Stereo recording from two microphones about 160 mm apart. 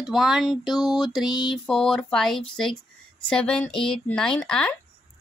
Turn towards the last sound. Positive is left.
turn(degrees=5)  # may be behind; listen again after turning